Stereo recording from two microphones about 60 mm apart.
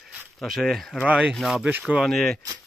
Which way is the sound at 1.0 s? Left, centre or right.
Centre.